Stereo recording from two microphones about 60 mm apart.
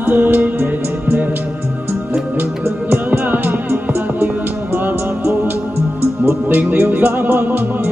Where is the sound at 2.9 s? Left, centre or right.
Right.